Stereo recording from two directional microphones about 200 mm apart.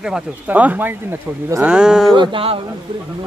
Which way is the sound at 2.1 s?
25° right (ahead or behind).